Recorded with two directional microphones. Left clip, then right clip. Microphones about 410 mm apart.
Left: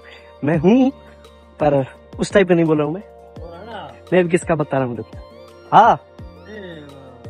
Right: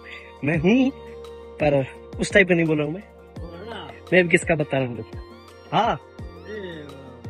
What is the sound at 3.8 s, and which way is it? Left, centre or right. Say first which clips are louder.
Music: left 2 dB; centre.